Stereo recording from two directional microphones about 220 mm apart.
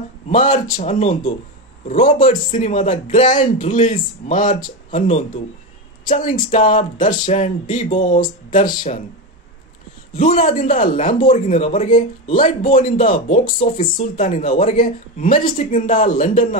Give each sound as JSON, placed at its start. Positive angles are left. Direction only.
{"t": 0.3, "sound": "speech", "side_deg": 35}
{"t": 10.1, "sound": "speech", "side_deg": 30}